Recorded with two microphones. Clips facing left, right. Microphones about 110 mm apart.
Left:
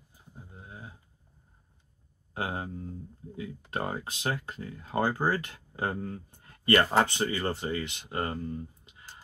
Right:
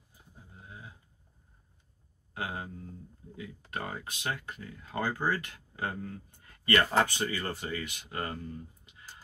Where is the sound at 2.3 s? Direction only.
35° left (ahead or behind).